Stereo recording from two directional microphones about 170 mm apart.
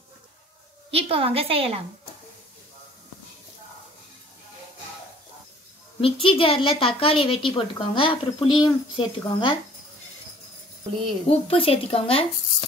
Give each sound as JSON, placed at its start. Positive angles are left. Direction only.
{"t": 0.9, "sound": "a woman's voice", "side_deg": -35}
{"t": 5.9, "sound": "a woman's voice", "side_deg": 30}
{"t": 11.2, "sound": "a woman's voice", "side_deg": 35}